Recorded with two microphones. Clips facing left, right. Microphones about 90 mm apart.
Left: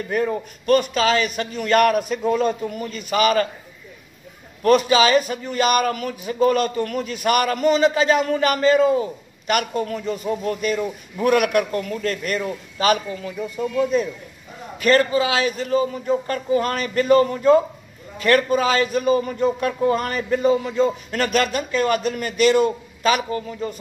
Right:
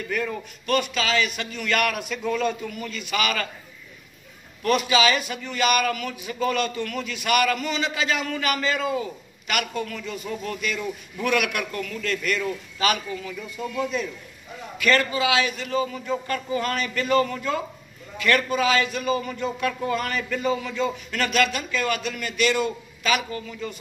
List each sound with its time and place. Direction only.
0.0 s a man's voice: 35° left (ahead or behind)
4.6 s a man's voice: 35° left (ahead or behind)